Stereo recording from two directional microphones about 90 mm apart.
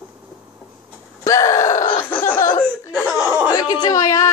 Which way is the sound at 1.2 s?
35° left (ahead or behind).